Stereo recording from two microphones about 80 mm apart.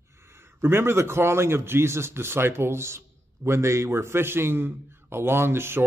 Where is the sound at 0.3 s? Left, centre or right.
Right.